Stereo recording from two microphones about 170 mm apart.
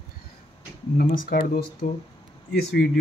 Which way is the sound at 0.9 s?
60° left (ahead or behind).